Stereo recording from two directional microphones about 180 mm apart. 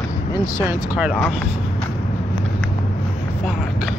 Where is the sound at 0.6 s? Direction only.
5° right (ahead or behind).